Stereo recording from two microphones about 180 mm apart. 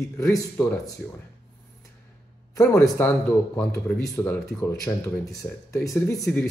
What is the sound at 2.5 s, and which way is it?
Speech, 15° left (ahead or behind).